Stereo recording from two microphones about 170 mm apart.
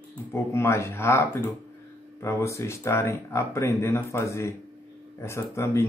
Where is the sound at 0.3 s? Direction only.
15° left (ahead or behind).